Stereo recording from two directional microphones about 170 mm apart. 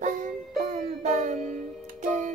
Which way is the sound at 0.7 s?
45° right (ahead or behind).